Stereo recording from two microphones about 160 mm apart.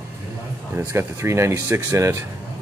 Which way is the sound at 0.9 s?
15° right (ahead or behind).